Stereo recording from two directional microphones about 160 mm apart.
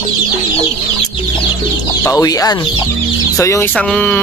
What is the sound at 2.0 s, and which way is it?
Speech, 20° left (ahead or behind).